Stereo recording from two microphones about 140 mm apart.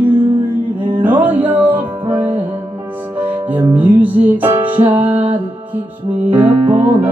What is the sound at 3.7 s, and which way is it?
Music, 10° right (ahead or behind).